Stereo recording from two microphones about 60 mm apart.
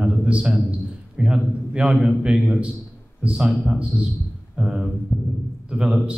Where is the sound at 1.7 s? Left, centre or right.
Centre.